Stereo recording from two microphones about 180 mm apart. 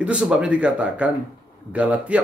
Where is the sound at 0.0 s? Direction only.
5° right (ahead or behind).